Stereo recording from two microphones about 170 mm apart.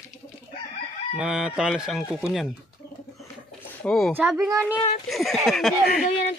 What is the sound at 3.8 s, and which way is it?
Speech, 5° left (ahead or behind).